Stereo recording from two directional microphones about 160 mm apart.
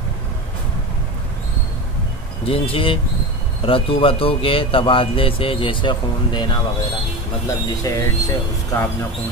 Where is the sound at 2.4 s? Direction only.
35° left (ahead or behind); by 8.0 s 20° left (ahead or behind).